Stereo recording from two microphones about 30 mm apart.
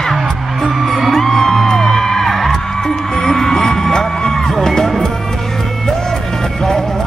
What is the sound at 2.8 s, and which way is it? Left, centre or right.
Music, centre.